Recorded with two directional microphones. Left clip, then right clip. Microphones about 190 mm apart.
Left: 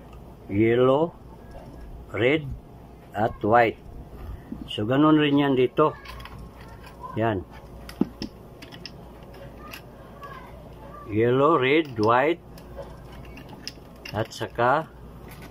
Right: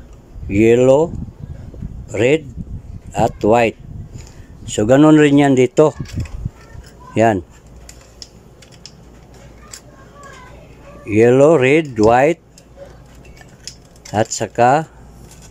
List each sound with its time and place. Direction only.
0.5 s speech: 30° right (ahead or behind)
2.1 s speech: 30° right (ahead or behind)
4.7 s speech: 40° right (ahead or behind)
11.1 s speech: 35° right (ahead or behind)
14.1 s speech: 35° right (ahead or behind)